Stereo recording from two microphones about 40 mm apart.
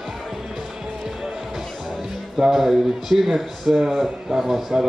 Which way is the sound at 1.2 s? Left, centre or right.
Centre.